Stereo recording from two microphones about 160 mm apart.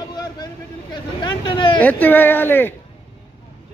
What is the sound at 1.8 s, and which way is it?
Speech, 10° left (ahead or behind).